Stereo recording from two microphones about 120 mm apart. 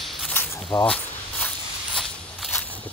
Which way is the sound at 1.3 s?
5° left (ahead or behind).